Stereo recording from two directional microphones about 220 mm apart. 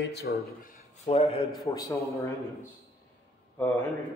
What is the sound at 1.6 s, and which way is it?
Speech, 15° left (ahead or behind).